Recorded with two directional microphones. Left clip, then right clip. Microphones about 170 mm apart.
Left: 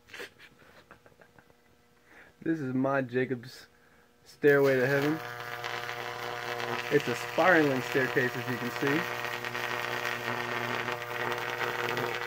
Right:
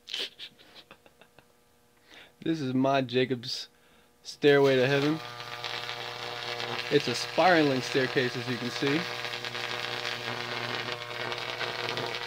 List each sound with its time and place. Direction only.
2.5 s speech: 30° right (ahead or behind)
5.0 s electric toothbrush: 20° left (ahead or behind)
7.3 s speech: 30° right (ahead or behind)
7.6 s a sound: 15° left (ahead or behind)